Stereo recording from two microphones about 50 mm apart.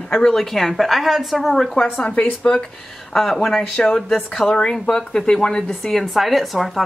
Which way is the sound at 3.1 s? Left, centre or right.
Centre.